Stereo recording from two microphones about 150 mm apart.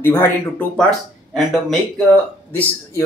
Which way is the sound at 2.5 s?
15° left (ahead or behind).